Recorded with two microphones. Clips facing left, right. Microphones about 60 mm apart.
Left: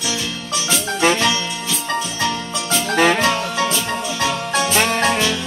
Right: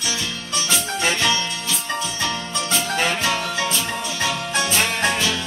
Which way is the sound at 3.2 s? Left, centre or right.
Centre.